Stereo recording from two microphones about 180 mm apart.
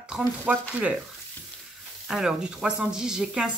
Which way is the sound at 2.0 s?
5° right (ahead or behind).